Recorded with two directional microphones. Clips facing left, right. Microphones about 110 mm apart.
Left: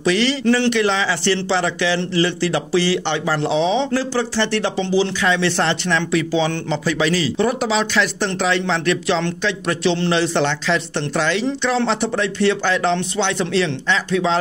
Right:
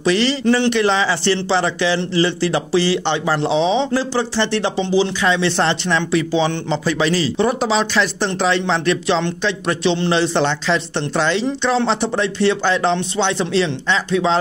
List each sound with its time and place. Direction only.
0.0 s a man's voice: 30° right (ahead or behind)